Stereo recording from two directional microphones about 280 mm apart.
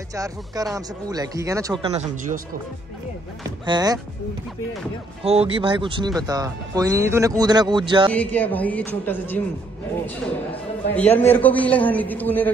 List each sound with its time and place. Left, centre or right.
0.1 s speech: centre
3.4 s speech: centre
5.2 s speech: right
8.1 s a man's voice: centre